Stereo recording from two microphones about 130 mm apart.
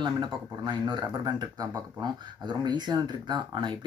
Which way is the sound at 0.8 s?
35° right (ahead or behind).